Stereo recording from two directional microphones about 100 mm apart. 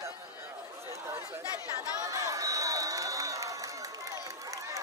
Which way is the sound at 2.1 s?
35° right (ahead or behind).